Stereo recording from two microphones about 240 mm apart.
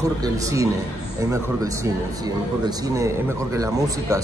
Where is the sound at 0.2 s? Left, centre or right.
Centre.